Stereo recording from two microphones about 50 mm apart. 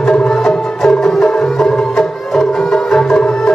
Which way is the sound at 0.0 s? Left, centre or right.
Centre.